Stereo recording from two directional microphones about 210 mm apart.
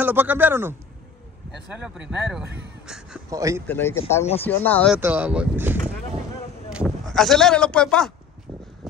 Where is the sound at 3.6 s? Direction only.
10° left (ahead or behind).